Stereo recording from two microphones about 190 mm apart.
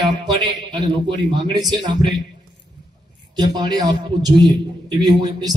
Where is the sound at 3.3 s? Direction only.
20° right (ahead or behind).